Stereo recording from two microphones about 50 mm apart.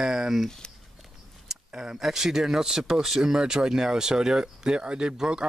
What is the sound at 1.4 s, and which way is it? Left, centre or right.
Speech, centre.